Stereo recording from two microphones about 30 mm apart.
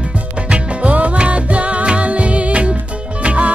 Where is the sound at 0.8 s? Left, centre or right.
Right.